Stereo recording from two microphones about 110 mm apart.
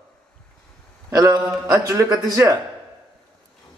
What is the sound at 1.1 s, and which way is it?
A man's voice, 35° right (ahead or behind).